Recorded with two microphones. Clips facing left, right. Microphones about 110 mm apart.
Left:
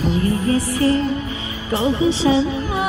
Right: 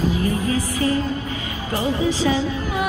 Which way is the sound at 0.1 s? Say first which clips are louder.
Left 3 dB; 30° left (ahead or behind).